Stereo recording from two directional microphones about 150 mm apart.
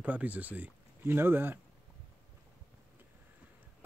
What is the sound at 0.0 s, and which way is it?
Speech, 10° right (ahead or behind).